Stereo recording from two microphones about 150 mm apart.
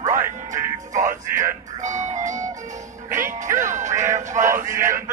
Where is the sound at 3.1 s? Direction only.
15° right (ahead or behind).